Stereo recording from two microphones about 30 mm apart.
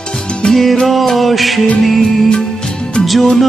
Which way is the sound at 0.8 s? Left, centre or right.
Centre.